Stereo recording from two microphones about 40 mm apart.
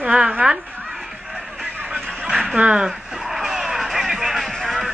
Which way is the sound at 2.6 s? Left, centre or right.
Right.